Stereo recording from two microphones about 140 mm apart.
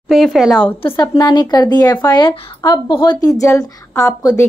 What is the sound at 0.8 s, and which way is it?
A woman's voice, 30° left (ahead or behind).